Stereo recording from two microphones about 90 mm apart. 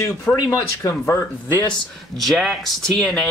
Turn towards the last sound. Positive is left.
turn(degrees=5)  # may be behind; listen again after turning